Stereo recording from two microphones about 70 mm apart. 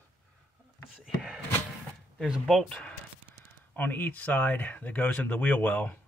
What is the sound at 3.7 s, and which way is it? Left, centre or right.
Speech, left.